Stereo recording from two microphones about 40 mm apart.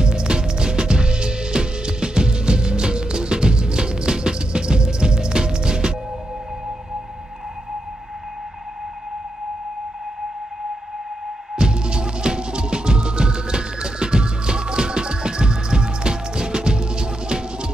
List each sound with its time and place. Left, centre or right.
0.0 s music: right
11.5 s music: right